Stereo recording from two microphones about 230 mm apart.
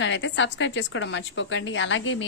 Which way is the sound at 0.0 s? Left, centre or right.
Left.